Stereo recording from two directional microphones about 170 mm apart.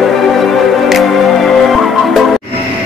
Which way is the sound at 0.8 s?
Centre (ahead or behind).